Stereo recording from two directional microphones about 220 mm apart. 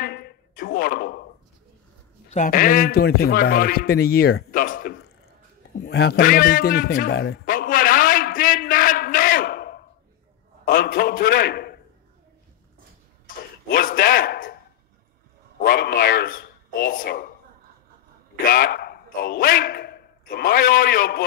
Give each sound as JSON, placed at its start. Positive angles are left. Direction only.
{"t": 0.0, "sound": "a sound", "side_deg": 45}
{"t": 2.3, "sound": "a man's voice", "side_deg": 40}
{"t": 5.9, "sound": "a sound", "side_deg": 45}
{"t": 10.6, "sound": "a man's voice", "side_deg": 40}
{"t": 13.7, "sound": "a man's voice", "side_deg": 40}
{"t": 15.6, "sound": "a man's voice", "side_deg": 45}
{"t": 18.4, "sound": "a man's voice", "side_deg": 45}